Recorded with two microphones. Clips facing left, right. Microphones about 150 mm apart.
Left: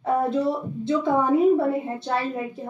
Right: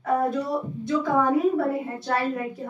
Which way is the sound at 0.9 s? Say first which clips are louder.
Left 2 dB; 25° left (ahead or behind).